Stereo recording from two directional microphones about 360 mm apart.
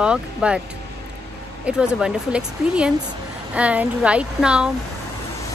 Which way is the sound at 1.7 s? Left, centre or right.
Centre.